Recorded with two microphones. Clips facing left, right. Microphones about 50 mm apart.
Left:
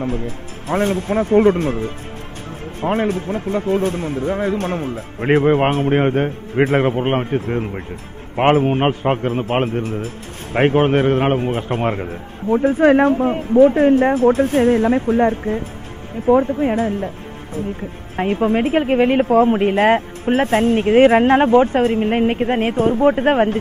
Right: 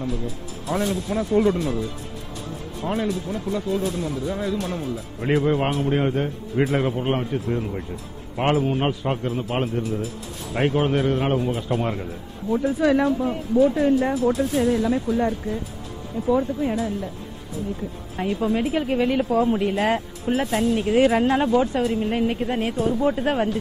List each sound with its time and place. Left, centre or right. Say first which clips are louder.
0.0 s a man's voice: left 5 dB; left
18.1 s a man's voice: left 6 dB; left